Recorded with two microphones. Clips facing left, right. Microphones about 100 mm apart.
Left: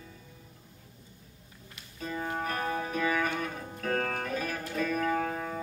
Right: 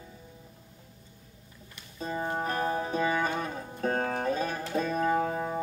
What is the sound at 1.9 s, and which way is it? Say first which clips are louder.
Music: right 2 dB; 30° right (ahead or behind).